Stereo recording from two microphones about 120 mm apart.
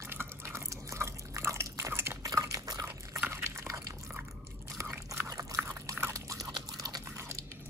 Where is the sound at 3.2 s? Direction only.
20° right (ahead or behind).